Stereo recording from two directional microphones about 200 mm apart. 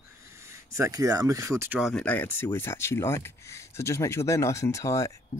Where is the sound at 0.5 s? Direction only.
15° right (ahead or behind).